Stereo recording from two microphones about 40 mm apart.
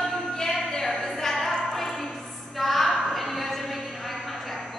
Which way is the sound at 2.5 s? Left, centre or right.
Centre.